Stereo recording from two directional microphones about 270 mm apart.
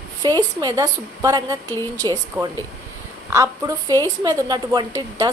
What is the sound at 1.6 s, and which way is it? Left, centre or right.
Speech, centre.